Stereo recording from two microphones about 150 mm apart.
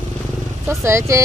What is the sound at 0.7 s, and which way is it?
Speech, 20° right (ahead or behind).